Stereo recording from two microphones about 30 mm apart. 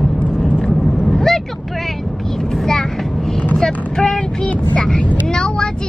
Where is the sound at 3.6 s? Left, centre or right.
Left.